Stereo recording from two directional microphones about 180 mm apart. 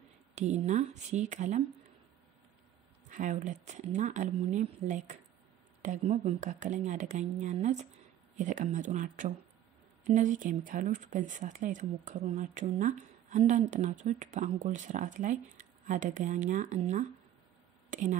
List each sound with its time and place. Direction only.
0.3 s speech: 40° right (ahead or behind)
3.1 s speech: 45° right (ahead or behind)
17.8 s a sound: 45° right (ahead or behind)